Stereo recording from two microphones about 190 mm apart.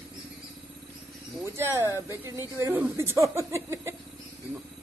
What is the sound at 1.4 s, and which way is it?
Speech, 15° right (ahead or behind).